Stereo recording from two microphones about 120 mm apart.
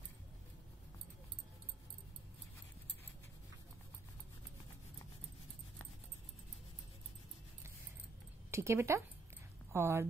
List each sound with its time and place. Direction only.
8.5 s a woman's voice: 25° right (ahead or behind)